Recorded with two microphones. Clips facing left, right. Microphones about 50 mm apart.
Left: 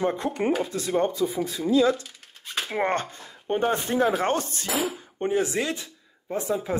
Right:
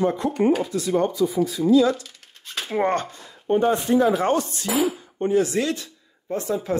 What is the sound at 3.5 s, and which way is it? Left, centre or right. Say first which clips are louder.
Speech: right 5 dB; left.